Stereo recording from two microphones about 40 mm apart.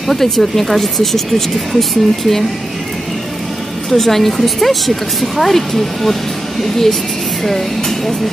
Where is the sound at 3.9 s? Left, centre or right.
Centre.